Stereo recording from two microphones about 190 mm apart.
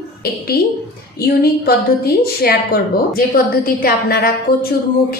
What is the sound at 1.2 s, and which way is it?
A woman's voice, 55° left (ahead or behind).